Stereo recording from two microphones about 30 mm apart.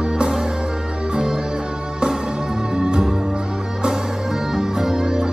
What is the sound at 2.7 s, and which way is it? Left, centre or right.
Music, right.